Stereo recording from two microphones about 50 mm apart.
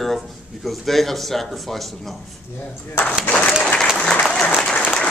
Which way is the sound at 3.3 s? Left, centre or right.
Left.